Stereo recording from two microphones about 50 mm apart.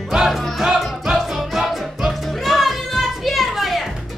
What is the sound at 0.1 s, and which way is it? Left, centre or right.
Music, centre.